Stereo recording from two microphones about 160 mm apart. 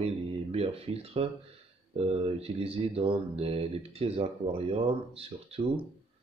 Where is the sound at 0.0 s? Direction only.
40° right (ahead or behind).